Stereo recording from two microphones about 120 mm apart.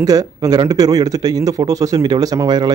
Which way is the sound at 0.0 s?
30° right (ahead or behind).